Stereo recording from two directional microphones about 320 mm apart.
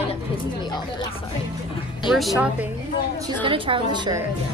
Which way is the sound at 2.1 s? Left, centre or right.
Centre.